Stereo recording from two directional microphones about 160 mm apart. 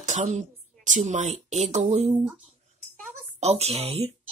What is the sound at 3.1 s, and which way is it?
Speech, 45° right (ahead or behind).